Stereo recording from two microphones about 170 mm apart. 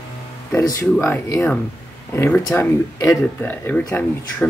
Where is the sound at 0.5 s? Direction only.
15° left (ahead or behind).